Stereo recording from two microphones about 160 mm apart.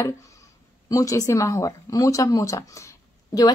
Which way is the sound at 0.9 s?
20° left (ahead or behind).